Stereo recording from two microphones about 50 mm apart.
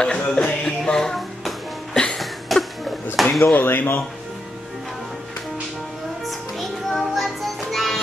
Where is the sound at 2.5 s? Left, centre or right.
Centre.